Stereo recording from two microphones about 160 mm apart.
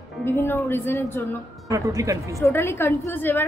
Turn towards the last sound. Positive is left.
turn(degrees=15)  # may be behind; listen again after turning